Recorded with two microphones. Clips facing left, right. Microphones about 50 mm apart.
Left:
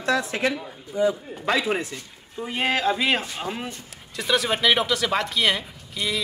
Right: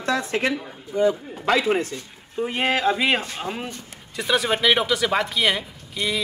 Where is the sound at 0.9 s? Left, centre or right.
Right.